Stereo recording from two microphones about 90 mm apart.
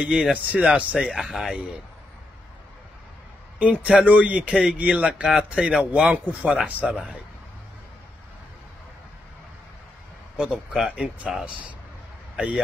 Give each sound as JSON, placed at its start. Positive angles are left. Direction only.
{"t": 0.0, "sound": "speech", "side_deg": -10}
{"t": 3.5, "sound": "speech", "side_deg": -15}
{"t": 10.3, "sound": "speech", "side_deg": -10}